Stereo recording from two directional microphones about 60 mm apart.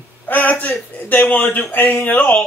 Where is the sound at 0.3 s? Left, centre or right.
Left.